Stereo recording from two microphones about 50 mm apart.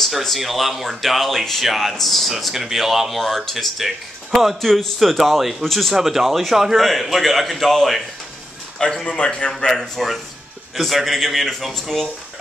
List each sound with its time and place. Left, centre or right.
0.0 s speech: centre
5.9 s speech: centre
8.7 s a man's voice: centre
9.5 s a man's voice: centre
9.8 s speech: centre